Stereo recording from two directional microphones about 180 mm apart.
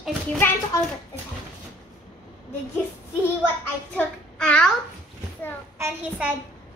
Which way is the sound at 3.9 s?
5° left (ahead or behind).